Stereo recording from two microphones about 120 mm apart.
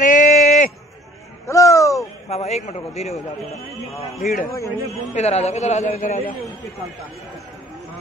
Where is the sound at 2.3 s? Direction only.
65° left (ahead or behind).